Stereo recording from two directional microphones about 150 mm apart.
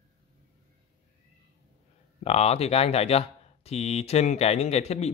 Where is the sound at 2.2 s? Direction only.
45° left (ahead or behind).